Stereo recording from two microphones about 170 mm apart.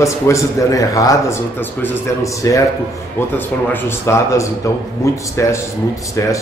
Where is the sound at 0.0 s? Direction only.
20° left (ahead or behind).